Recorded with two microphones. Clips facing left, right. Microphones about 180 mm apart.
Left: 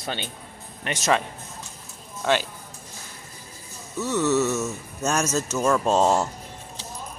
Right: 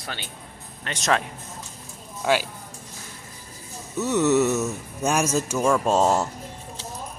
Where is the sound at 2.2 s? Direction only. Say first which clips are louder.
Right 1 dB; 5° right (ahead or behind).